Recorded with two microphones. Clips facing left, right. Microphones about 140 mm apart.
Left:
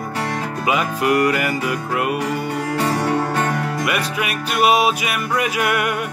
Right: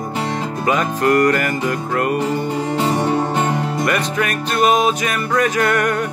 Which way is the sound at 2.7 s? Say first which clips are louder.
Right 1 dB; 20° right (ahead or behind).